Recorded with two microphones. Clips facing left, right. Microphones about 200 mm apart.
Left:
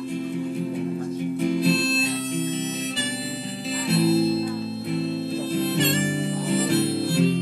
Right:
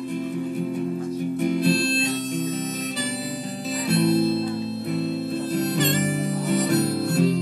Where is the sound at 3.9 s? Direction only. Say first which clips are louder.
Even; centre (ahead or behind).